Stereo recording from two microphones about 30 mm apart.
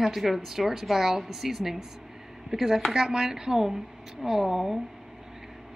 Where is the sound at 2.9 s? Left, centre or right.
Right; by 4.8 s centre.